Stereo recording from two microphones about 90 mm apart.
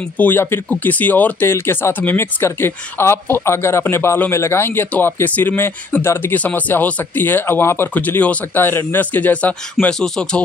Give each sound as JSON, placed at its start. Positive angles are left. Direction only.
{"t": 0.2, "sound": "speech", "side_deg": 25}